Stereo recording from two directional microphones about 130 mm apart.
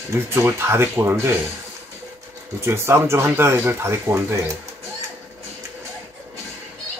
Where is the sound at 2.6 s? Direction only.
20° right (ahead or behind).